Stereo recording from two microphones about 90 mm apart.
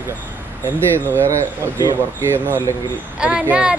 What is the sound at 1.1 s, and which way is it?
A man's voice, 30° right (ahead or behind).